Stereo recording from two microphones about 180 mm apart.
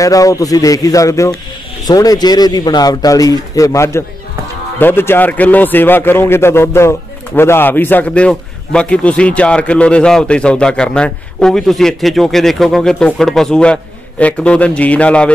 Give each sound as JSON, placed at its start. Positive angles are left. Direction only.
{"t": 0.0, "sound": "a man's voice", "side_deg": 20}